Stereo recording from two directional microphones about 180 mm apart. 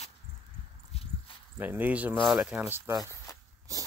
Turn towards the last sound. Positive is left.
turn(degrees=-20)  # may be behind; listen again after turning